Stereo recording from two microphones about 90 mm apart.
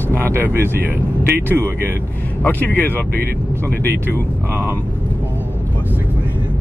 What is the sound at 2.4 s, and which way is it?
Speech, 20° left (ahead or behind).